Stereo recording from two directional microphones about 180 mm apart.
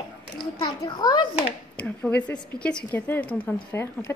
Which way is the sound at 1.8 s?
5° left (ahead or behind).